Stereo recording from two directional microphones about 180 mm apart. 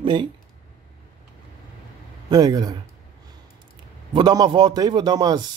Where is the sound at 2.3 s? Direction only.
20° right (ahead or behind).